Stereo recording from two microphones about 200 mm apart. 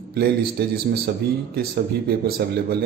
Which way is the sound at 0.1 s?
50° right (ahead or behind).